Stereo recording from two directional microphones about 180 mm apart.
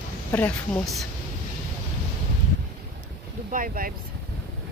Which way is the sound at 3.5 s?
50° right (ahead or behind).